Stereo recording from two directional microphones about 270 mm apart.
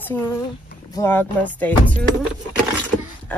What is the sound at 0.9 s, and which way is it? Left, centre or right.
Speech, centre.